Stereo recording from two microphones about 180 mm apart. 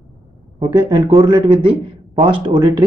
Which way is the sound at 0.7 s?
30° right (ahead or behind).